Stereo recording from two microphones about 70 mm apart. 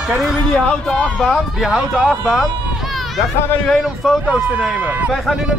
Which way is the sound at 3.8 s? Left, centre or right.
Centre.